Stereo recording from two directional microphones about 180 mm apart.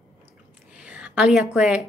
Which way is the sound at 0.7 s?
5° right (ahead or behind).